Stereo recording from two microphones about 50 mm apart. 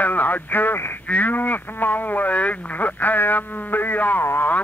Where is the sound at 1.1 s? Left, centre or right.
Left.